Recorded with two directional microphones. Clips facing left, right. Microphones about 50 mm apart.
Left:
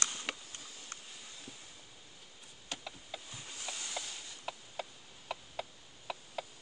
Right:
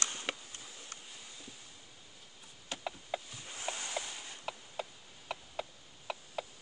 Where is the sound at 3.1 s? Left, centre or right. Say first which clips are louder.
Right 5 dB; right.